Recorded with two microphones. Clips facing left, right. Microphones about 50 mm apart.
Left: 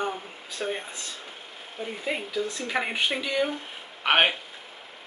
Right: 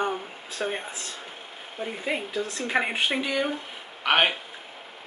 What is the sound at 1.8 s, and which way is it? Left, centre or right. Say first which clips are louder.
Speech: right 1 dB; centre.